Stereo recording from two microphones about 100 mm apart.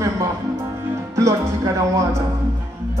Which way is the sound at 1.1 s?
30° right (ahead or behind).